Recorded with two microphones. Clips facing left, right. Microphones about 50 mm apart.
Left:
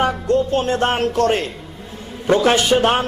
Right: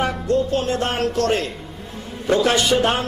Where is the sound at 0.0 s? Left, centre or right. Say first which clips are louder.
Left 3 dB; left.